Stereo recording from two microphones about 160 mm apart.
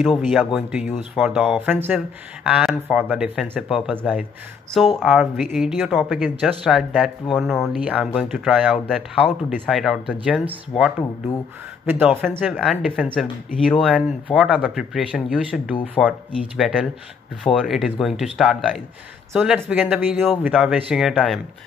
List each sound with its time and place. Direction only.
0.6 s speech: 5° right (ahead or behind)
11.8 s speech: 10° right (ahead or behind)
12.5 s speech: centre (ahead or behind)